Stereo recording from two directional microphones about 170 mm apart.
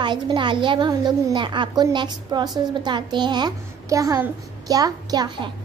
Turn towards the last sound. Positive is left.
turn(degrees=-25)  # may be behind; listen again after turning